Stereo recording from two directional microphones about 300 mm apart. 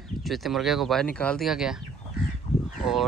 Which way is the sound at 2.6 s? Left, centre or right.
Centre.